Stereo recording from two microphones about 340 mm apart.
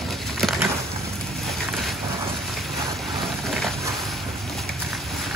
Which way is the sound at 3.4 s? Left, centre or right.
Centre.